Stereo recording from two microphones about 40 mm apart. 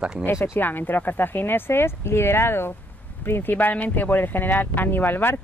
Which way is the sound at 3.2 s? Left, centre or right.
Left.